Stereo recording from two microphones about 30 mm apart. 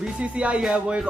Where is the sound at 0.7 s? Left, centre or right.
Right.